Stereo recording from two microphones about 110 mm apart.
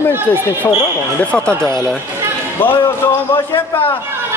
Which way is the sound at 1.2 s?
10° left (ahead or behind).